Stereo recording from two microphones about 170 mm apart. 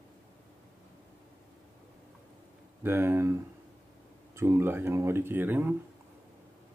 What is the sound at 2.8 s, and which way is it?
Speech, 15° right (ahead or behind).